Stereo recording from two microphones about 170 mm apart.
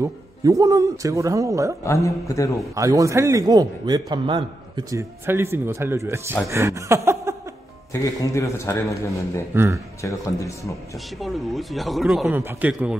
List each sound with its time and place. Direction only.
0.0 s speech: 20° right (ahead or behind)
1.9 s a man's voice: 20° left (ahead or behind)
2.7 s a man's voice: 20° right (ahead or behind)
7.9 s a man's voice: 20° left (ahead or behind)
9.5 s a man's voice: 15° right (ahead or behind)
10.0 s a man's voice: 20° left (ahead or behind)
11.1 s a man's voice: centre (ahead or behind)